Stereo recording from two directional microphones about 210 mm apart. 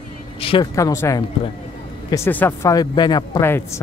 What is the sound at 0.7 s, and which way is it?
Speech, 15° left (ahead or behind).